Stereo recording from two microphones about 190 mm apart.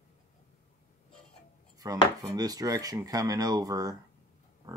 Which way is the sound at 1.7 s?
20° right (ahead or behind).